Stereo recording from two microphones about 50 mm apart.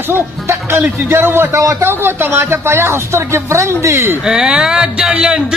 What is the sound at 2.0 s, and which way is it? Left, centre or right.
Speech, right.